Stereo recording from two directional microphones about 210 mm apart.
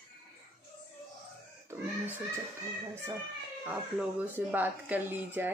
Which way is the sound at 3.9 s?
5° right (ahead or behind).